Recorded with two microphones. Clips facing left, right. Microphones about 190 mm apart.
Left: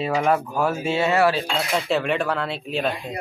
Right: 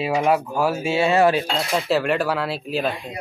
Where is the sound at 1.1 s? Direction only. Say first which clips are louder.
Right 3 dB; 20° right (ahead or behind).